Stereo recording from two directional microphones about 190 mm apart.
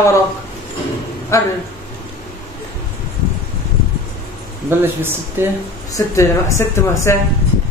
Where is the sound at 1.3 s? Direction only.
15° left (ahead or behind).